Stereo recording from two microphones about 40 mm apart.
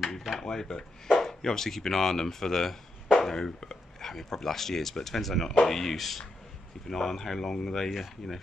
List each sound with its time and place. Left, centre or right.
0.4 s speech: centre
7.9 s speech: centre